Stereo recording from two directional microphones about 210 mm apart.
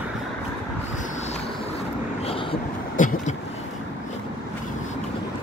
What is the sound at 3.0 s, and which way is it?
Vehicle, 35° left (ahead or behind).